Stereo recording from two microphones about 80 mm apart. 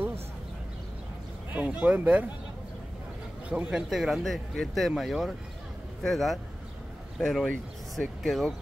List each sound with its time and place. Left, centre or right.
1.5 s speech: centre
3.4 s a man's voice: centre
3.9 s speech: centre